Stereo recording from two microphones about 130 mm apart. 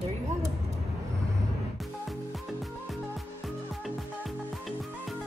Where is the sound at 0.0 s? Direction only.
60° right (ahead or behind).